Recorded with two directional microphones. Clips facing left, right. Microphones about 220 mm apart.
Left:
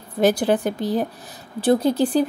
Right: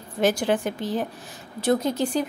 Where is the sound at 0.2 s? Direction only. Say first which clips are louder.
Left 4 dB; 35° left (ahead or behind).